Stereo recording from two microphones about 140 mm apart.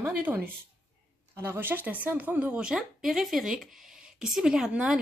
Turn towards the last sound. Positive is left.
turn(degrees=-5)  # may be behind; listen again after turning